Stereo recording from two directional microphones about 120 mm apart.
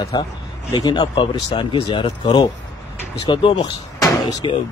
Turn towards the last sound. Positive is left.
turn(degrees=35)  # may be behind; listen again after turning